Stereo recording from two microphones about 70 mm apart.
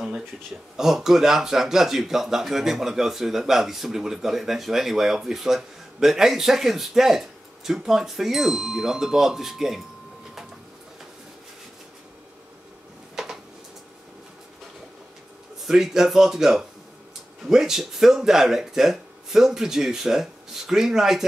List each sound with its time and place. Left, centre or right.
0.7 s speech: centre
13.1 s a sound: centre
15.6 s speech: centre